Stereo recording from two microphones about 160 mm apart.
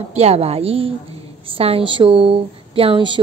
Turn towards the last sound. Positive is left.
turn(degrees=-30)  # may be behind; listen again after turning